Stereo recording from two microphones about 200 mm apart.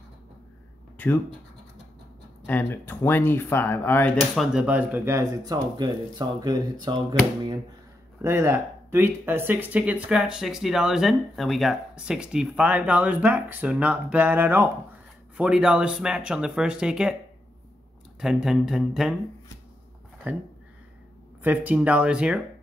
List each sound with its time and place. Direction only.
0.9 s speech: 10° left (ahead or behind)
2.4 s speech: 10° left (ahead or behind)
4.5 s speech: 5° right (ahead or behind)
18.2 s speech: 5° right (ahead or behind)
20.2 s speech: 10° right (ahead or behind)